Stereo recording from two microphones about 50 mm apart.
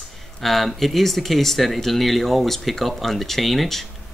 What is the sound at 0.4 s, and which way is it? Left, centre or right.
Speech, centre.